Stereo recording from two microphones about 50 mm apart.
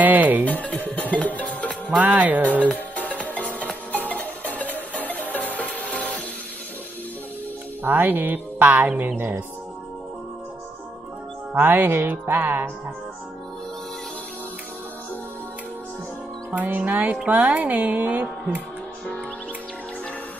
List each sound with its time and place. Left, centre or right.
0.0 s music: right
0.5 s speech: left
0.8 s music: left
2.0 s music: right
3.0 s music: left
7.8 s speech: right
11.5 s music: right
16.5 s music: right
17.3 s speech: right